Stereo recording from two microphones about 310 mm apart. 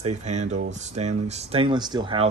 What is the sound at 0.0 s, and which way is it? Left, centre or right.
Speech, right.